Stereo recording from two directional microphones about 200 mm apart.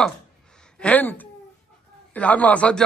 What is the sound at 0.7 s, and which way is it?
A woman's voice, 10° left (ahead or behind).